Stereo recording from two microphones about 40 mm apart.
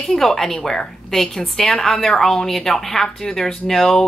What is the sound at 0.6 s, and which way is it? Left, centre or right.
Speech, left.